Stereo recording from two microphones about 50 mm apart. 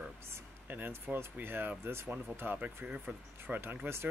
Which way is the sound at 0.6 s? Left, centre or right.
Right.